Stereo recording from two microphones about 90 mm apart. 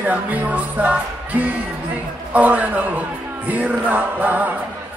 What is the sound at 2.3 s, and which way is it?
Speech, 20° right (ahead or behind).